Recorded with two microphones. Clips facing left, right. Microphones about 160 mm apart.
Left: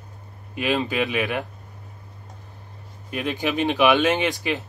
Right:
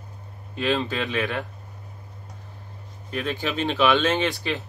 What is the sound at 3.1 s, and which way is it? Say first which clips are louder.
Speech: left 2 dB; 15° left (ahead or behind).